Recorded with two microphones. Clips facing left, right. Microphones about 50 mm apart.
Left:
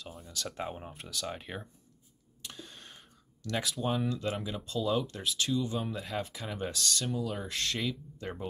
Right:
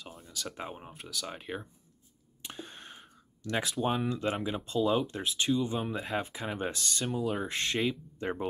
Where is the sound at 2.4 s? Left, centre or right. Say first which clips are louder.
Right 3 dB; right.